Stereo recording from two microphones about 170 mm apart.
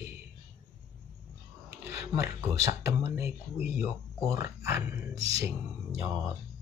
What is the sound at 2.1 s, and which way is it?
Speech, 15° right (ahead or behind).